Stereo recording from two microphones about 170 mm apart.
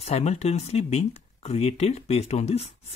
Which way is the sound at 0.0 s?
40° left (ahead or behind).